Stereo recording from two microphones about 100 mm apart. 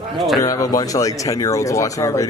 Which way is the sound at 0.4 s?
35° left (ahead or behind).